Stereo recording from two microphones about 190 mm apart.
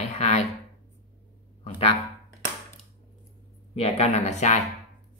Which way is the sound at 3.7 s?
35° left (ahead or behind).